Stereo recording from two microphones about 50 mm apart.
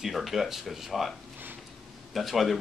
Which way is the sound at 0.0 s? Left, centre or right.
Centre.